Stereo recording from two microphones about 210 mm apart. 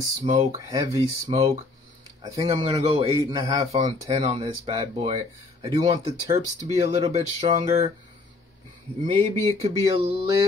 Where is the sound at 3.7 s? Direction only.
25° right (ahead or behind).